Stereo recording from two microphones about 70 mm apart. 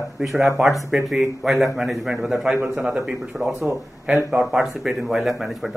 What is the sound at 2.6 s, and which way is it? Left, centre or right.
Speech, centre.